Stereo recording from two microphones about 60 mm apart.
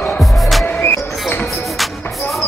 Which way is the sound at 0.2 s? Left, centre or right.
Centre.